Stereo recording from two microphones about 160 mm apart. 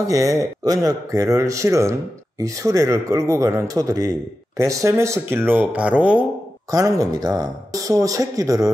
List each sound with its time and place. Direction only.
0.1 s speech: 20° right (ahead or behind)
6.7 s speech: 25° right (ahead or behind)